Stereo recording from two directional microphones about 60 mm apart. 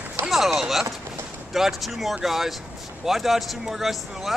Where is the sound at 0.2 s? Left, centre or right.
Right.